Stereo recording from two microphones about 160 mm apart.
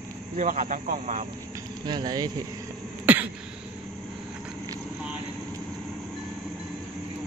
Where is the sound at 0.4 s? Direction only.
55° right (ahead or behind).